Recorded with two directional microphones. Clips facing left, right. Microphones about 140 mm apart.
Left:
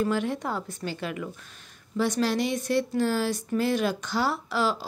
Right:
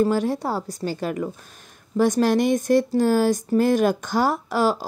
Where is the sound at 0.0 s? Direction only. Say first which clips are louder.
Right 6 dB; 35° right (ahead or behind).